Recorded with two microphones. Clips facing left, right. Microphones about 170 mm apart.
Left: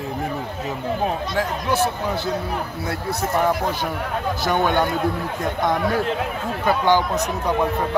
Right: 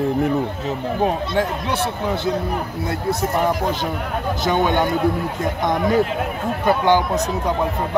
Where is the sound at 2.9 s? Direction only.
20° right (ahead or behind).